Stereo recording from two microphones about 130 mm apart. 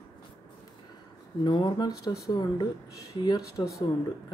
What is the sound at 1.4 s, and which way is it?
Speech, 35° left (ahead or behind).